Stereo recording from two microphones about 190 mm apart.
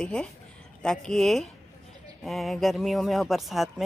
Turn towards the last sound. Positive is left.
turn(degrees=0)  # may be behind; listen again after turning